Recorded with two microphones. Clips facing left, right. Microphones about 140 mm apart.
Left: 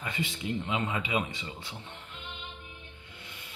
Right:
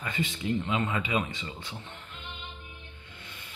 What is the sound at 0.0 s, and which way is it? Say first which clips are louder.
A man's voice: right 2 dB; 15° left (ahead or behind).